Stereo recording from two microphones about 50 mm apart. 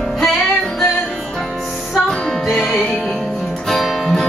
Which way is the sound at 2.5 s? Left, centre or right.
Centre.